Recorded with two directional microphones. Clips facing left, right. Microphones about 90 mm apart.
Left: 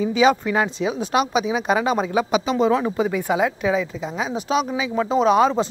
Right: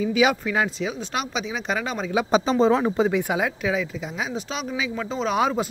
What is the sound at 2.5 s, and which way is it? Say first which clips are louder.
Speech: even; 35° right (ahead or behind).